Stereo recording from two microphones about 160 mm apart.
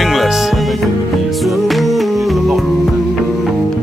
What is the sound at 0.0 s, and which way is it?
Music, centre (ahead or behind).